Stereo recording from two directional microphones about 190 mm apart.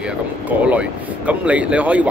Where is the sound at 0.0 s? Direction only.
5° right (ahead or behind).